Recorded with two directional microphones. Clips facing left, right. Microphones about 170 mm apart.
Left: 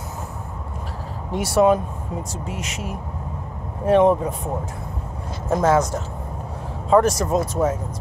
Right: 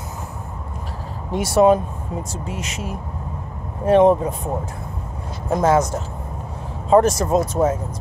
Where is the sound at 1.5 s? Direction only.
25° right (ahead or behind).